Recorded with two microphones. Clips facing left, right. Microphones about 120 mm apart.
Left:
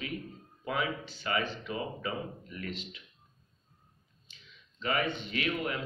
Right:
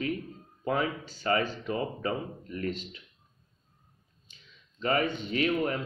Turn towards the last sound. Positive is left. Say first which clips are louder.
# right 5 dB
turn(degrees=-40)  # may be behind; listen again after turning